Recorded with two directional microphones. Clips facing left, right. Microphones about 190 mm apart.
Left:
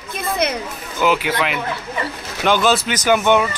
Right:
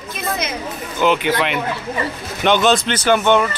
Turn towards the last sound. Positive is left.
turn(degrees=10)  # may be behind; listen again after turning